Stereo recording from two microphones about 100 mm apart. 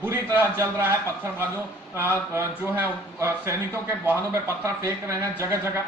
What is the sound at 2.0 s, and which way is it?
A man's voice, 20° right (ahead or behind).